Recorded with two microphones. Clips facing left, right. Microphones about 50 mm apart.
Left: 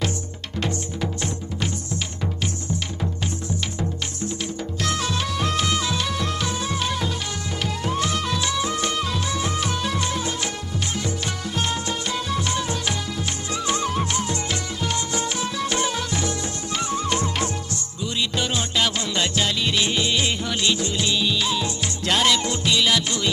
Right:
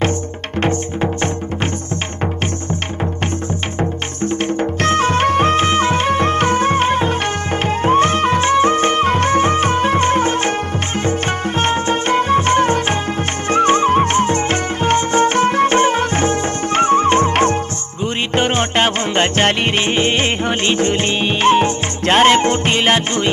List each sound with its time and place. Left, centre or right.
0.6 s music: right
4.2 s music: right